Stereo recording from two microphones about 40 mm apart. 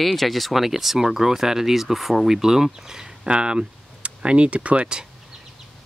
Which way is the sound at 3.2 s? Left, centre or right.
Right.